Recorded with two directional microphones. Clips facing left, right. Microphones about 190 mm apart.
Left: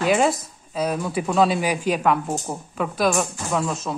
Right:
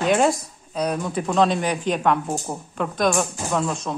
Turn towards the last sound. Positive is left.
turn(degrees=5)  # may be behind; listen again after turning